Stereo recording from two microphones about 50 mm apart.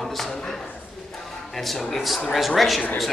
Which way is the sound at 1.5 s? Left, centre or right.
Centre.